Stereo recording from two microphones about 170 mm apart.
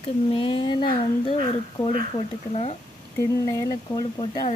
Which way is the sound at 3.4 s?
20° left (ahead or behind).